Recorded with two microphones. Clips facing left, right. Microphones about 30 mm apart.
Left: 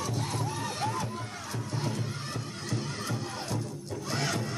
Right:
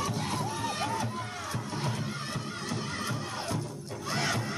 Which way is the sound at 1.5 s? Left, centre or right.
Right.